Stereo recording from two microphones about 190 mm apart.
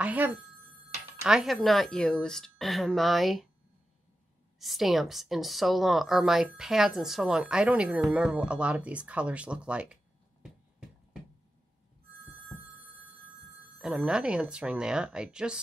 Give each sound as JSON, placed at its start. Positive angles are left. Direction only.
{"t": 0.0, "sound": "telephone bell ringing", "side_deg": -10}
{"t": 1.2, "sound": "a woman's voice", "side_deg": 0}
{"t": 4.6, "sound": "a woman's voice", "side_deg": 0}
{"t": 13.7, "sound": "a woman's voice", "side_deg": -5}